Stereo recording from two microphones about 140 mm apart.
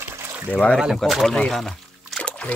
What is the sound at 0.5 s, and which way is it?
Speech, 10° left (ahead or behind).